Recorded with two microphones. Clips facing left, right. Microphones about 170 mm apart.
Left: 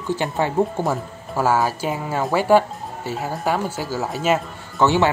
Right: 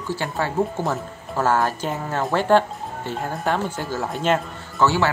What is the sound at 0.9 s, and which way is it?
Speech, 10° left (ahead or behind).